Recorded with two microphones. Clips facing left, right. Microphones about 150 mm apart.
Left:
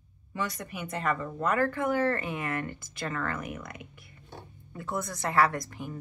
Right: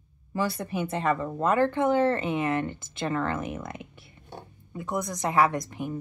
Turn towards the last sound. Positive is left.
turn(degrees=-20)  # may be behind; listen again after turning